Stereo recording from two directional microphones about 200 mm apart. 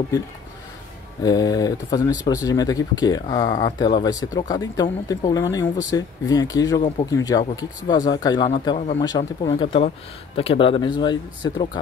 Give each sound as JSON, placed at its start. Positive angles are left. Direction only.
{"t": 1.2, "sound": "speech", "side_deg": 20}